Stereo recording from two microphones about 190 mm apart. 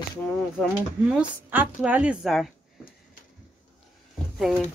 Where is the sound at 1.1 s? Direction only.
5° right (ahead or behind).